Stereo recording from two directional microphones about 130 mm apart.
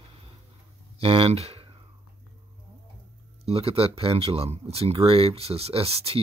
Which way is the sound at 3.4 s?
50° right (ahead or behind).